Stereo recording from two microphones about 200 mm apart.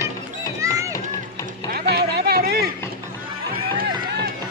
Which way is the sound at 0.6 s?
15° right (ahead or behind).